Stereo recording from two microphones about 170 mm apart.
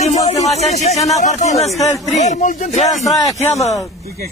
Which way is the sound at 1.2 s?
45° left (ahead or behind).